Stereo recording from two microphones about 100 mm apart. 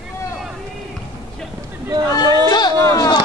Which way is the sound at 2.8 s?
35° left (ahead or behind).